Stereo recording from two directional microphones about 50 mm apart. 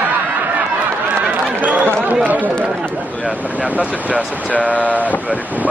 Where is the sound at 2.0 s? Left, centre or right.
Right.